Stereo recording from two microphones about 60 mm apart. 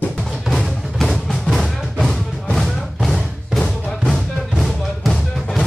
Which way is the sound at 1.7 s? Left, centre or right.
Centre.